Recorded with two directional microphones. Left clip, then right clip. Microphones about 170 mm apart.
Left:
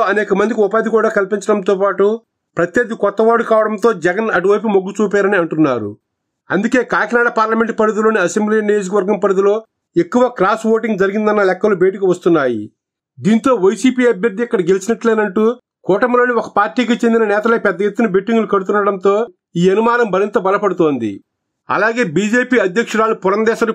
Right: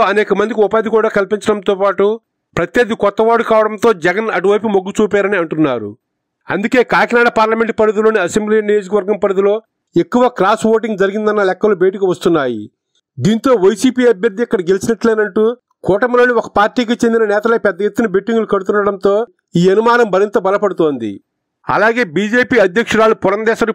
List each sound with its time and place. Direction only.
0.0 s a man's voice: 40° right (ahead or behind)